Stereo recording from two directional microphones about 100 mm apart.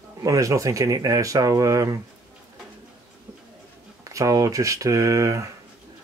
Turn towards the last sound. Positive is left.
turn(degrees=-30)  # may be behind; listen again after turning